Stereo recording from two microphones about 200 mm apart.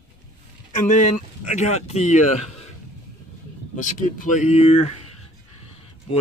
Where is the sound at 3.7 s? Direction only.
40° left (ahead or behind).